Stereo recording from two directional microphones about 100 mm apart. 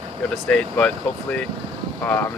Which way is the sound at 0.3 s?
10° left (ahead or behind).